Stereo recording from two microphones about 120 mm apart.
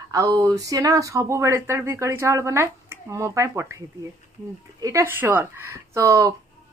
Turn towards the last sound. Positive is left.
turn(degrees=-25)  # may be behind; listen again after turning